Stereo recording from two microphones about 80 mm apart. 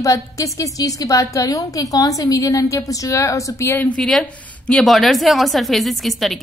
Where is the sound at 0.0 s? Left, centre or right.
Left.